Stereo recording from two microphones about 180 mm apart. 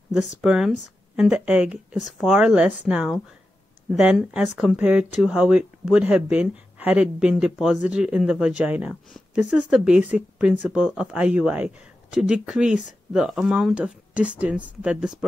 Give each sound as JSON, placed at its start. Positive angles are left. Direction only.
{"t": 0.4, "sound": "speech", "side_deg": 0}